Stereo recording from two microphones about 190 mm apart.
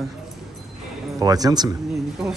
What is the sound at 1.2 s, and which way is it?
Speech, 20° right (ahead or behind).